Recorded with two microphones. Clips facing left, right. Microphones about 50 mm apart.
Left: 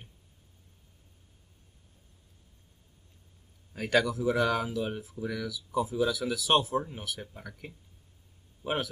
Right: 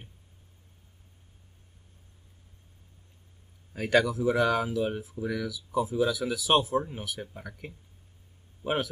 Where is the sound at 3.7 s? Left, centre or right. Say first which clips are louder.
Right 2 dB; centre.